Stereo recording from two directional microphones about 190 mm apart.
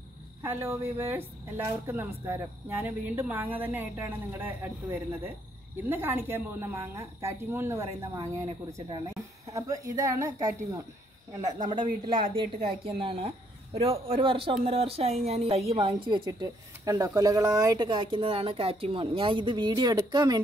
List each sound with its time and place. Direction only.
0.4 s speech: 15° right (ahead or behind)
5.9 s speech: 10° right (ahead or behind)